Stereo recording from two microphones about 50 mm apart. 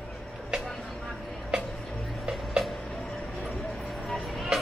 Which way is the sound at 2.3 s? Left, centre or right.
Centre.